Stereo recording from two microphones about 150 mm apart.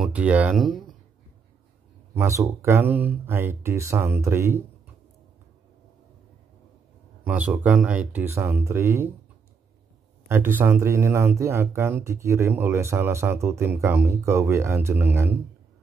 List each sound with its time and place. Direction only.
0.0 s speech: 10° right (ahead or behind)
2.1 s speech: 20° right (ahead or behind)
7.2 s speech: 10° right (ahead or behind)
10.2 s speech: 15° right (ahead or behind)